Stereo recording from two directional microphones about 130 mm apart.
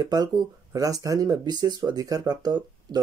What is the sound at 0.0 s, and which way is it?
Speech, 30° right (ahead or behind).